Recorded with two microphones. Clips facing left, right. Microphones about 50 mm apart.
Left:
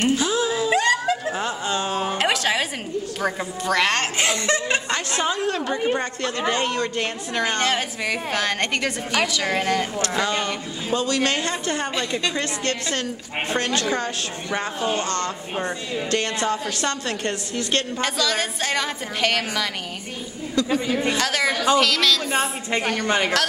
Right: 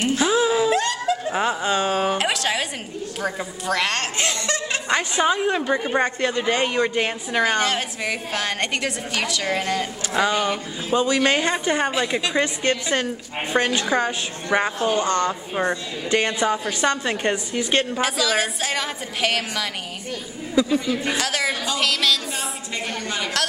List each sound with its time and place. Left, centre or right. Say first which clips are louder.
0.2 s a sound: right 3 dB; centre
0.7 s a sound: left 1 dB; centre
1.3 s a sound: right 4 dB; centre
2.1 s a sound: left 1 dB; centre
3.2 s a woman's voice: even; centre
4.5 s chuckle: left 3 dB; left
4.8 s a woman's voice: right 4 dB; centre
7.6 s a woman's voice: left 1 dB; centre
10.0 s a woman's voice: right 2 dB; centre
11.9 s a woman's voice: right 2 dB; centre
18.0 s a woman's voice: right 2 dB; centre
20.8 s a woman's voice: left 1 dB; centre
21.2 s a woman's voice: left 2 dB; centre
22.3 s a woman's voice: left 6 dB; left